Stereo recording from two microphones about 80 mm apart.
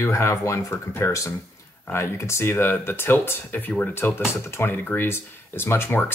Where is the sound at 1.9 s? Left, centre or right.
Left.